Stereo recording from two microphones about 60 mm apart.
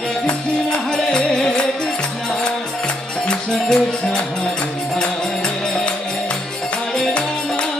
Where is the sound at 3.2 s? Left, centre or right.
Centre.